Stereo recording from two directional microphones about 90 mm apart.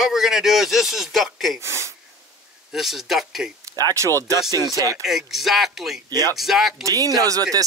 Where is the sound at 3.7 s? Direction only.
35° right (ahead or behind).